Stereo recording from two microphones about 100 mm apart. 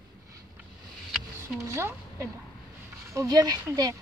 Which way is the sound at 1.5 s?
30° right (ahead or behind).